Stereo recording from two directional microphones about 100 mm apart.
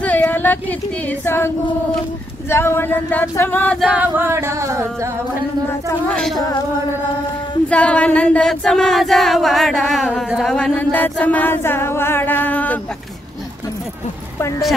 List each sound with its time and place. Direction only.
0.0 s speech: 15° left (ahead or behind)
2.5 s chant: 25° left (ahead or behind)
3.9 s male singing: 20° right (ahead or behind)
6.0 s female singing: 5° left (ahead or behind)
7.7 s a sound: 10° left (ahead or behind)
10.5 s chant: 15° left (ahead or behind)